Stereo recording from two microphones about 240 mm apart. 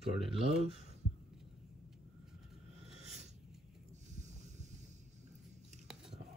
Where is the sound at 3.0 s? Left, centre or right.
Right.